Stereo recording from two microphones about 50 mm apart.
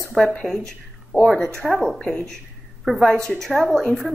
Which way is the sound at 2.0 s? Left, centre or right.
Centre.